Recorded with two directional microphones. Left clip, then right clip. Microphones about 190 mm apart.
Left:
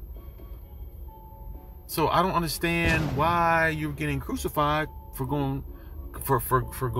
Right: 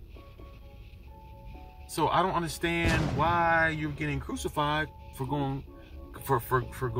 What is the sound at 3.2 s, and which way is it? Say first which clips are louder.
Speech: left 2 dB; 15° left (ahead or behind).